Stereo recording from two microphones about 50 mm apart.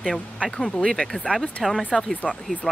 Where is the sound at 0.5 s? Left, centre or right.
Centre.